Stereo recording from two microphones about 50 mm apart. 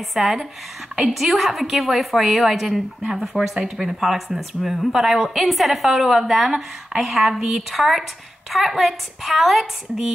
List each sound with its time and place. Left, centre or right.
0.1 s a woman's voice: centre